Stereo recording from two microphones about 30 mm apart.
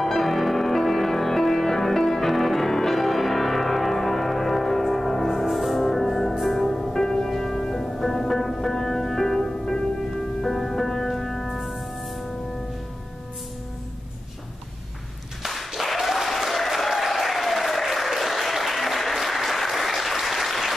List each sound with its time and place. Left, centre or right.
0.0 s music: centre
7.2 s music: centre
11.4 s music: centre
15.4 s applause: centre